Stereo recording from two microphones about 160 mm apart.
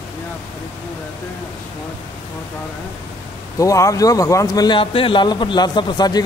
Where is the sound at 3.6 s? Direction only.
20° left (ahead or behind).